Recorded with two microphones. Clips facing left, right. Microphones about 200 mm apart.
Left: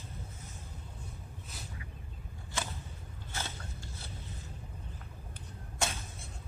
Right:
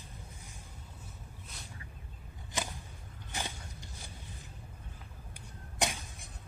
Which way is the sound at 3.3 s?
15° right (ahead or behind).